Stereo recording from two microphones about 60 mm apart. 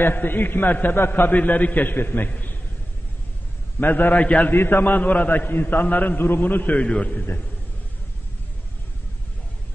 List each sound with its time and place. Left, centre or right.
0.0 s a man's voice: left
3.8 s a man's voice: left
4.5 s a man's voice: left